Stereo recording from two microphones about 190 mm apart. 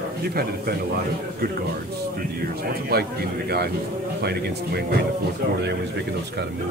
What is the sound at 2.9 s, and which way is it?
Speech, 55° right (ahead or behind).